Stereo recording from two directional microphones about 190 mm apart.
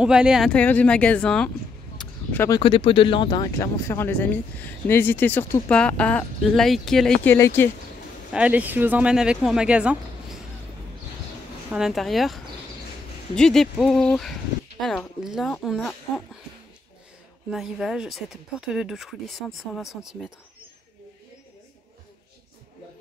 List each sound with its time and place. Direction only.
0.0 s speech: 5° right (ahead or behind)
2.0 s a sound: 10° left (ahead or behind)
2.6 s speech: 30° left (ahead or behind); by 7.3 s 5° left (ahead or behind)
7.3 s speech: 15° left (ahead or behind)
8.3 s speech: 5° right (ahead or behind)
11.7 s speech: centre (ahead or behind)
17.5 s speech: centre (ahead or behind)